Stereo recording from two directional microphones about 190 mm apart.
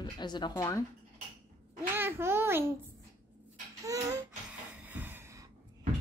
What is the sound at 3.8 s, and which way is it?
Speech, 15° right (ahead or behind).